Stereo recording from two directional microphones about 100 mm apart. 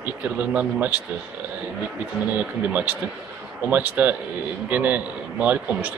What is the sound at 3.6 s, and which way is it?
Speech, 15° right (ahead or behind).